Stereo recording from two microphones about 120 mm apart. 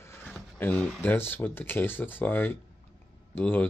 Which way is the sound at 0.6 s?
15° left (ahead or behind).